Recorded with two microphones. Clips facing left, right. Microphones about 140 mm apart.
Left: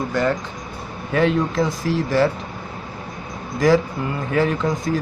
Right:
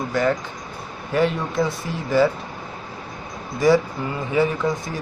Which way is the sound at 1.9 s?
80° left.